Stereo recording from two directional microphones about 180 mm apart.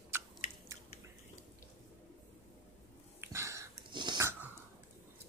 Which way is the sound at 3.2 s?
15° right (ahead or behind).